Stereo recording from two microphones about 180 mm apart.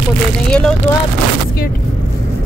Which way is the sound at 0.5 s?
5° left (ahead or behind).